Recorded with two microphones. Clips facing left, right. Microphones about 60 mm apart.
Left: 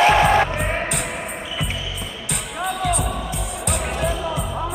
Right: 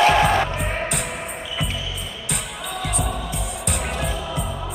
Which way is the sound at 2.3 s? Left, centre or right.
Centre.